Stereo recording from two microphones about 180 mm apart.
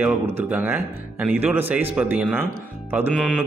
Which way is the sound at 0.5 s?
10° right (ahead or behind).